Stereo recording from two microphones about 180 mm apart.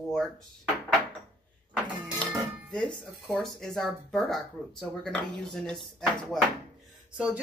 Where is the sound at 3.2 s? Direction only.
Centre (ahead or behind).